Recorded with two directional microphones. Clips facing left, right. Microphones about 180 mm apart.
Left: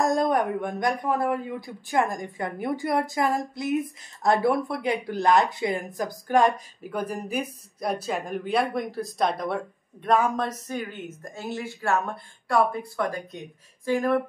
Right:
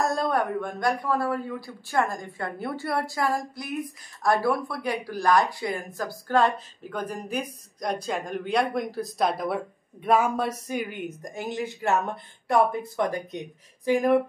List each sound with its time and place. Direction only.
0.0 s a woman's voice: 15° left (ahead or behind); by 14.2 s 15° right (ahead or behind)